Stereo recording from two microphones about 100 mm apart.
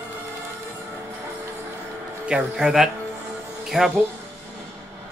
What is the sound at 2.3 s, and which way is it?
Speech, 5° right (ahead or behind).